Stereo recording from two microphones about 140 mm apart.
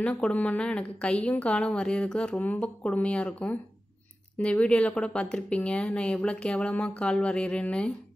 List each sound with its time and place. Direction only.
0.0 s speech: 10° left (ahead or behind)